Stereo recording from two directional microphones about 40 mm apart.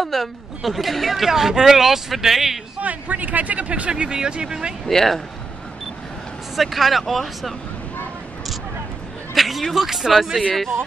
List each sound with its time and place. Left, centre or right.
0.0 s speech: centre
2.8 s speech: right
3.9 s speech: right
4.8 s speech: centre
6.5 s speech: centre
9.3 s music: centre
9.8 s speech: centre
10.5 s speech: centre